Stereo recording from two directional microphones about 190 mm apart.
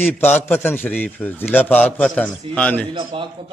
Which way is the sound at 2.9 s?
25° right (ahead or behind).